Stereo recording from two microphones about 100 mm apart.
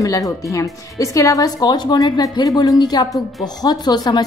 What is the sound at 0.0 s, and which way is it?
A woman's voice, 35° left (ahead or behind).